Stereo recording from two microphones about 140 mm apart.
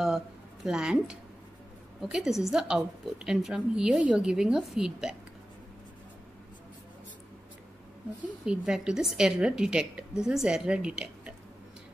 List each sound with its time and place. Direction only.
0.7 s a woman's voice: 5° right (ahead or behind)
8.5 s a woman's voice: 5° right (ahead or behind)